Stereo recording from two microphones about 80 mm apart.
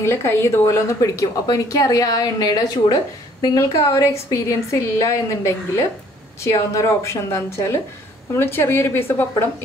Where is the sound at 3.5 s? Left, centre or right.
Left.